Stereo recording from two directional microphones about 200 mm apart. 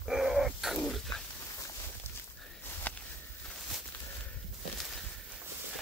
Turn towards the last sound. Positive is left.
turn(degrees=0)  # may be behind; listen again after turning